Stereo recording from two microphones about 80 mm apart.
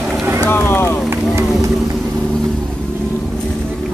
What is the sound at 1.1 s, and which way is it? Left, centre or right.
Run, right.